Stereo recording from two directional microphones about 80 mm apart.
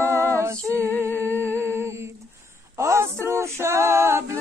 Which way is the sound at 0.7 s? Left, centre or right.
Left.